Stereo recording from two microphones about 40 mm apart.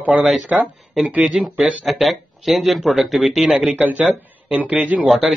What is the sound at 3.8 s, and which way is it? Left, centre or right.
Speech, right.